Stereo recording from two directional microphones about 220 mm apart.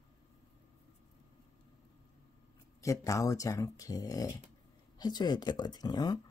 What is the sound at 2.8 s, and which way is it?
Speech, 15° left (ahead or behind).